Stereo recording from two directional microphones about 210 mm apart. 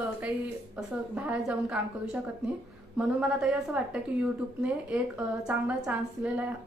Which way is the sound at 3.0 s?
5° right (ahead or behind).